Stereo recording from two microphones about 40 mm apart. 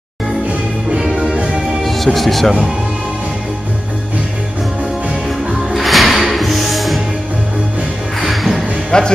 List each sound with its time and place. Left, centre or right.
0.9 s music: centre
1.8 s music: centre
2.1 s speech: centre
5.7 s music: centre
8.3 s music: centre
8.9 s speech: left